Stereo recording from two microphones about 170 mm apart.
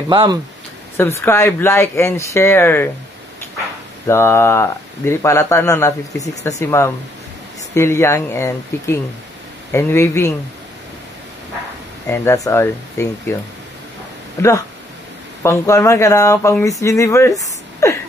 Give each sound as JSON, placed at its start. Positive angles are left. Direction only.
{"t": 0.1, "sound": "speech", "side_deg": -25}
{"t": 0.9, "sound": "speech", "side_deg": 15}
{"t": 4.1, "sound": "speech", "side_deg": 15}
{"t": 12.1, "sound": "speech", "side_deg": 20}